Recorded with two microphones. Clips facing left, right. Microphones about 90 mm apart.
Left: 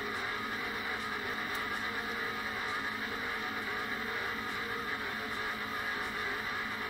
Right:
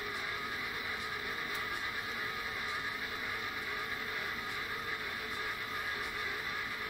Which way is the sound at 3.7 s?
10° left (ahead or behind).